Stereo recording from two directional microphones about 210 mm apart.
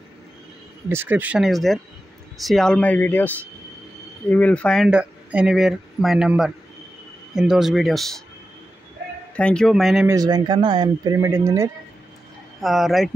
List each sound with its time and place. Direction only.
0.8 s speech: 10° right (ahead or behind)
9.4 s speech: 5° left (ahead or behind)
10.0 s speech: 20° right (ahead or behind)
12.5 s speech: centre (ahead or behind)